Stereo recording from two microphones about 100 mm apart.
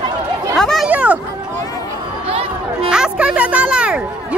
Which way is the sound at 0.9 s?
15° right (ahead or behind).